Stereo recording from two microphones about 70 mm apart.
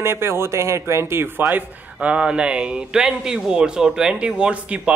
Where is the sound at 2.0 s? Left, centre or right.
Centre.